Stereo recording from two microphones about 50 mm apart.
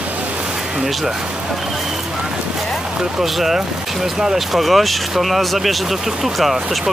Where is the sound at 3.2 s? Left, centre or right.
Centre.